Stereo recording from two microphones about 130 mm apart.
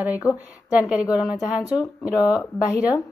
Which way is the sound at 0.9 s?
10° right (ahead or behind).